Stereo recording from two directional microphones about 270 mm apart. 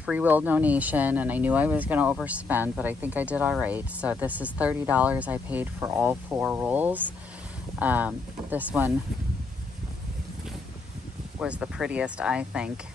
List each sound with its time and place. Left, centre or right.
0.0 s speech: centre
11.3 s speech: centre